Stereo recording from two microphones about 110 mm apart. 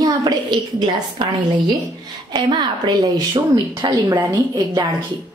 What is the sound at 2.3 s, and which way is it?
A woman's voice, 45° right (ahead or behind).